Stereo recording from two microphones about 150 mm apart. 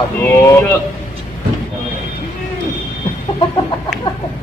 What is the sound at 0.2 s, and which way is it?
Speech, 15° left (ahead or behind).